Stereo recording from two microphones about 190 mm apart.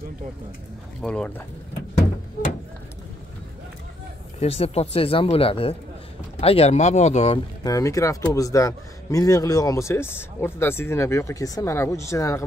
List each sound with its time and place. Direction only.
1.0 s speech: 5° left (ahead or behind)
4.4 s speech: 35° left (ahead or behind)
7.6 s speech: 15° left (ahead or behind)